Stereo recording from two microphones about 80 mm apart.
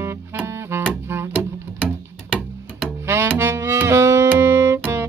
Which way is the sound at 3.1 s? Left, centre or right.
Right.